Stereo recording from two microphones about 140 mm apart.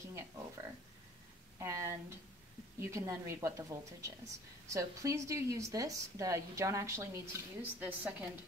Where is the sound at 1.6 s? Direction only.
20° right (ahead or behind).